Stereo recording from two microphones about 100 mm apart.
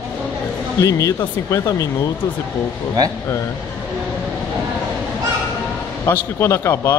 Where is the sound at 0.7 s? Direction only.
35° left (ahead or behind).